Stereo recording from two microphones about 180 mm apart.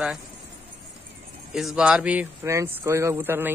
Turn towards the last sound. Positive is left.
turn(degrees=-10)  # may be behind; listen again after turning